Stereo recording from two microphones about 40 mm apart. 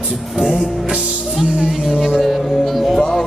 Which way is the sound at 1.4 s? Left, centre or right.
Centre.